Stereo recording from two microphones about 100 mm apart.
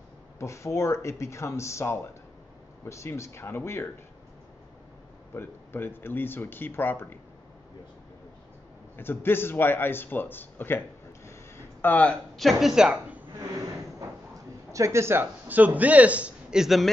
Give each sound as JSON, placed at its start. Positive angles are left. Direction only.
{"t": 0.4, "sound": "speech", "side_deg": 30}
{"t": 5.3, "sound": "speech", "side_deg": 20}
{"t": 8.9, "sound": "speech", "side_deg": 20}
{"t": 11.2, "sound": "a sound", "side_deg": 25}
{"t": 12.4, "sound": "a woman's voice", "side_deg": 0}
{"t": 14.7, "sound": "a man's voice", "side_deg": -30}